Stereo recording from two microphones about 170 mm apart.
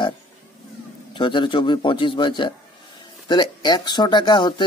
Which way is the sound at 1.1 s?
30° left (ahead or behind).